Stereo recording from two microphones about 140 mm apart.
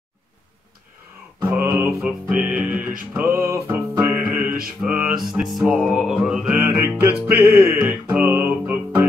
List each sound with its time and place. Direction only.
1.5 s music: 20° right (ahead or behind)
2.0 s music: 5° right (ahead or behind)
6.6 s music: 20° right (ahead or behind)